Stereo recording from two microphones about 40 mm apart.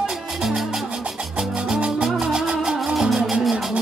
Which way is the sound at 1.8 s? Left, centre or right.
Right.